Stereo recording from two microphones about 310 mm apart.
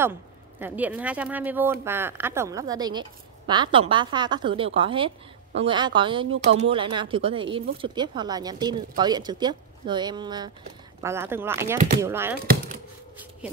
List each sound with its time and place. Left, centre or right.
0.0 s speech: centre